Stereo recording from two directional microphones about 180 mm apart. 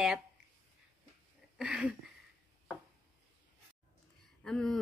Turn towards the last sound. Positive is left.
turn(degrees=0)  # may be behind; listen again after turning